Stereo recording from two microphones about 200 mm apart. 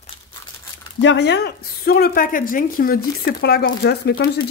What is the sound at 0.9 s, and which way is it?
A woman's voice, 60° left (ahead or behind).